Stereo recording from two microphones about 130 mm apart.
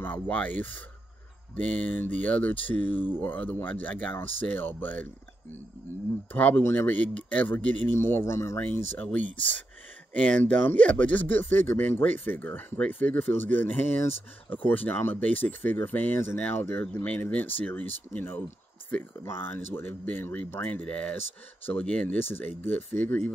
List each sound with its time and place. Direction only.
0.0 s speech: 10° left (ahead or behind)
6.3 s speech: 15° left (ahead or behind)